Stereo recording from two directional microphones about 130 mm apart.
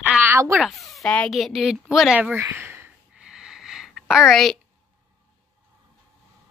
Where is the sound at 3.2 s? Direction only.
5° right (ahead or behind).